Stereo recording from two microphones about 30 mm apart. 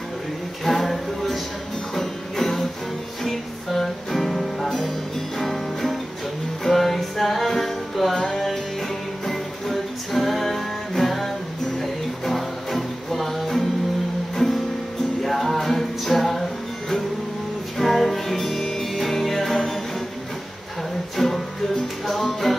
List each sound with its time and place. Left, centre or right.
0.7 s a sound: centre
2.0 s music: centre
17.7 s music: centre
18.4 s music: centre
21.2 s music: centre